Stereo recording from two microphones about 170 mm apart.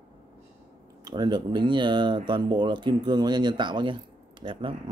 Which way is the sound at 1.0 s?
25° right (ahead or behind).